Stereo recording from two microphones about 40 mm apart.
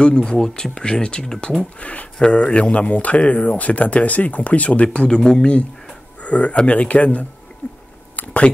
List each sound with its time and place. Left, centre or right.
0.0 s speech: left
1.6 s speech: left; by 5.5 s centre
6.2 s speech: left
7.6 s chewing: left
8.2 s a sound: left